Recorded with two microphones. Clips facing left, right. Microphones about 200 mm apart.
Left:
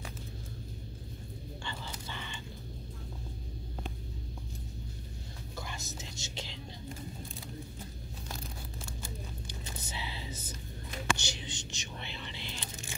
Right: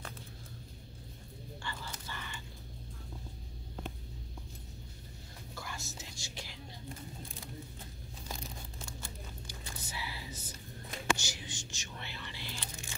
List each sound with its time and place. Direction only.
1.6 s a sound: 20° left (ahead or behind)
5.6 s whispering: 20° left (ahead or behind)
9.0 s whispering: 20° left (ahead or behind)